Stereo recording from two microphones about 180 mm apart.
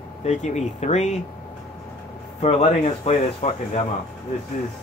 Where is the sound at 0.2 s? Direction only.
40° left (ahead or behind).